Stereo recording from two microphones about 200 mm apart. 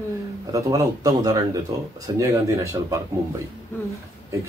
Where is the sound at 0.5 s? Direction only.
15° right (ahead or behind).